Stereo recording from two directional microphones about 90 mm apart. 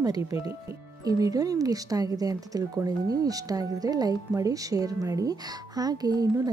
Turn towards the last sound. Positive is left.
turn(degrees=-45)  # may be behind; listen again after turning